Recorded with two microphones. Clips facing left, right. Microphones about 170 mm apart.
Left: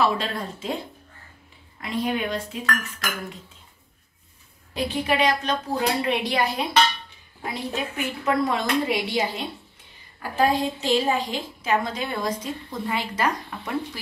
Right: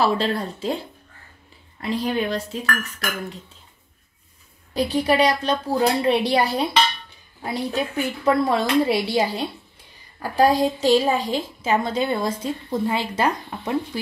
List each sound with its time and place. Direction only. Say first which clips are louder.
0.0 s a woman's voice: right 3 dB; 35° right (ahead or behind)
1.8 s a woman's voice: right 3 dB; 35° right (ahead or behind)
4.7 s a woman's voice: right 5 dB; 35° right (ahead or behind)
7.7 s a woman's voice: right 4 dB; 35° right (ahead or behind)